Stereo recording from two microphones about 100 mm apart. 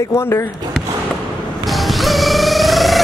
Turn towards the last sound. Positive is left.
turn(degrees=0)  # may be behind; listen again after turning